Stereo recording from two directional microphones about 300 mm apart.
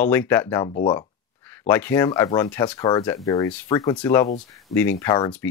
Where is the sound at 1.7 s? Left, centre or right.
Centre.